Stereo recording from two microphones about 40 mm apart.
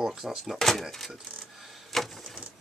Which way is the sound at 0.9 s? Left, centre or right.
Centre.